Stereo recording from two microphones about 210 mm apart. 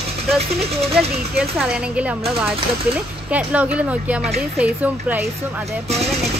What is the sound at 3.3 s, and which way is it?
Speech, 5° right (ahead or behind).